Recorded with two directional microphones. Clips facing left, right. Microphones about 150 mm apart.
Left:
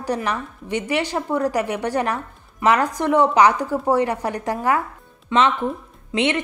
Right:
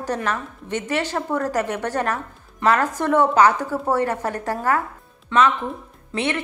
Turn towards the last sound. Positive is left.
turn(degrees=20)  # may be behind; listen again after turning